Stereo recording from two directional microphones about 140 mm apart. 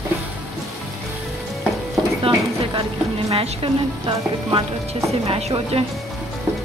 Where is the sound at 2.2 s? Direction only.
35° right (ahead or behind).